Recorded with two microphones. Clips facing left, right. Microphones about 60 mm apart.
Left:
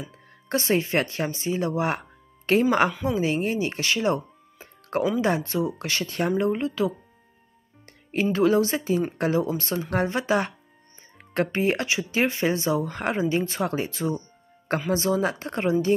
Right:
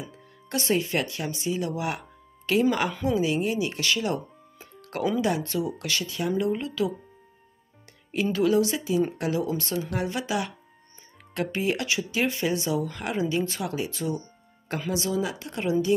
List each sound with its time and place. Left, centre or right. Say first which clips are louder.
0.1 s speech: left 7 dB; left
6.3 s speech: left 1 dB; left
8.1 s speech: left 2 dB; left